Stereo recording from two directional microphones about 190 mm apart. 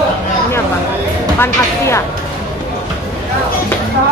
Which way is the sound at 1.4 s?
15° left (ahead or behind).